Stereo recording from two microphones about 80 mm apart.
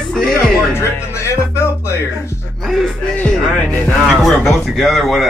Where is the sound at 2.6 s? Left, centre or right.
Centre.